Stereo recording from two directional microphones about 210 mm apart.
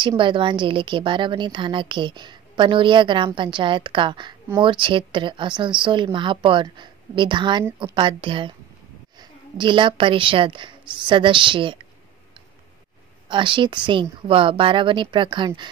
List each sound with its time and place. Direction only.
0.0 s a woman's voice: 25° right (ahead or behind)
13.3 s a woman's voice: 25° right (ahead or behind)